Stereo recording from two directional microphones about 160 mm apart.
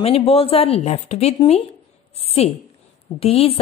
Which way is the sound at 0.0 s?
40° left (ahead or behind).